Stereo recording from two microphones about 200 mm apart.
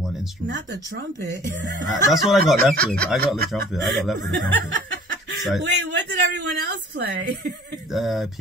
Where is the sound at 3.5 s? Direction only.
Centre (ahead or behind).